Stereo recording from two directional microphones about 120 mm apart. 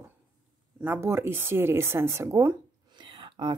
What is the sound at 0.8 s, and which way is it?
Speech, 20° right (ahead or behind).